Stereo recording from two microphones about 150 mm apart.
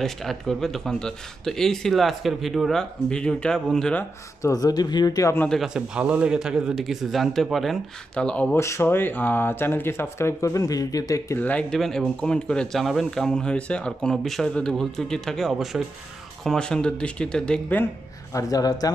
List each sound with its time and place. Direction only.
0.0 s speech: centre (ahead or behind)
4.4 s speech: 25° left (ahead or behind)
5.5 s speech: 5° right (ahead or behind)
8.5 s speech: 20° left (ahead or behind)
18.3 s speech: 25° left (ahead or behind)